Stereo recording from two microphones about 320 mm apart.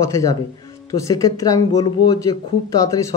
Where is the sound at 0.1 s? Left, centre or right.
Centre.